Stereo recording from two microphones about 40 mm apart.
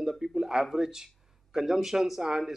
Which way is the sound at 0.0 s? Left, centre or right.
Centre.